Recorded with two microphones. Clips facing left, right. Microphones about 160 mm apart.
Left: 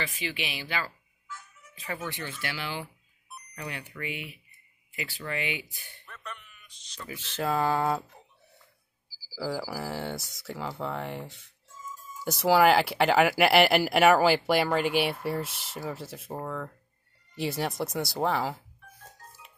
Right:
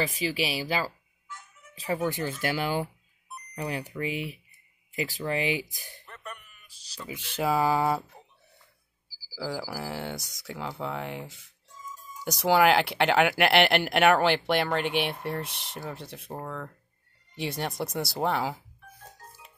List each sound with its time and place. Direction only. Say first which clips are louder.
0.0 s speech: right 6 dB; 40° right (ahead or behind)
6.7 s a sound: left 1 dB; 5° right (ahead or behind)
7.1 s speech: right 2 dB; 15° right (ahead or behind)
9.3 s speech: left 1 dB; centre (ahead or behind)
11.8 s music: left 1 dB; 20° right (ahead or behind)
12.3 s speech: left 1 dB; centre (ahead or behind)